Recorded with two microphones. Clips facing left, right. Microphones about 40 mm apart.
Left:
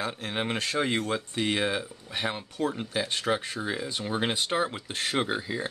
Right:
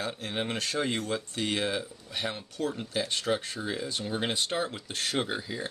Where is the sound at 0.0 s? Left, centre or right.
Left.